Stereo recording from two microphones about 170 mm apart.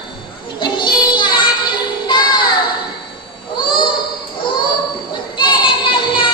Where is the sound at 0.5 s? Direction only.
25° left (ahead or behind).